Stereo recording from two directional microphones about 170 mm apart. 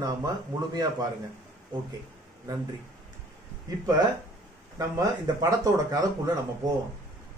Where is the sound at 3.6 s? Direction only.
20° right (ahead or behind).